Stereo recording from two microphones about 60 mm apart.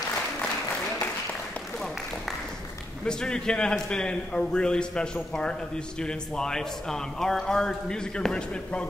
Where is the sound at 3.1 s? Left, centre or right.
Centre.